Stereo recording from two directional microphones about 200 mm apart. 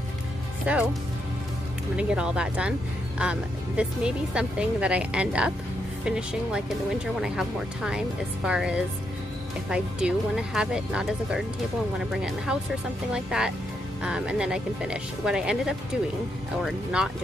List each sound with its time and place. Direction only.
0.7 s speech: 5° right (ahead or behind)
2.0 s speech: 5° right (ahead or behind)